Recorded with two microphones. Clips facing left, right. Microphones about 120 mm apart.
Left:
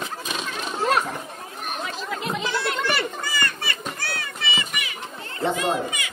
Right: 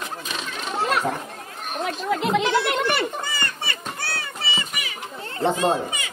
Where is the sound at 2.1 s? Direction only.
70° right (ahead or behind).